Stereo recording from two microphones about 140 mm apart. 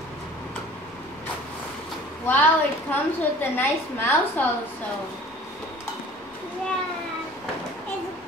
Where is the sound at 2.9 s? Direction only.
15° left (ahead or behind).